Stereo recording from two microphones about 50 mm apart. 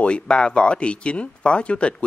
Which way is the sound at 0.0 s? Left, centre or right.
Centre.